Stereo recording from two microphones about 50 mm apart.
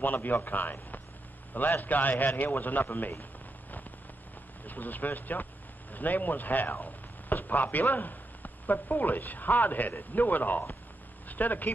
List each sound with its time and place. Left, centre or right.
0.0 s a man's voice: left
4.6 s a man's voice: left